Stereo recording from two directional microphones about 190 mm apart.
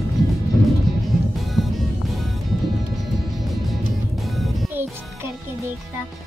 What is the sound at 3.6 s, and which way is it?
Music, centre (ahead or behind).